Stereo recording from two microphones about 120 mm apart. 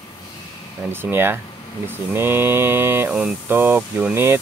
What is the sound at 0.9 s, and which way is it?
Speech, 20° right (ahead or behind).